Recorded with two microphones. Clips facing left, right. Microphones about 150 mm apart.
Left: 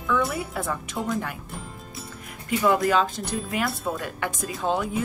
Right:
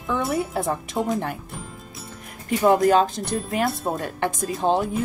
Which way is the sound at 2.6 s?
40° right (ahead or behind).